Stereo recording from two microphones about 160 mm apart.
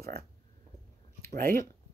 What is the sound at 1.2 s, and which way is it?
Speech, 70° right (ahead or behind).